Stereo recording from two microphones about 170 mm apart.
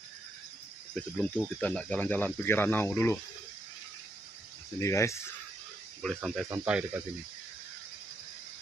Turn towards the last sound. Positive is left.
turn(degrees=-10)  # may be behind; listen again after turning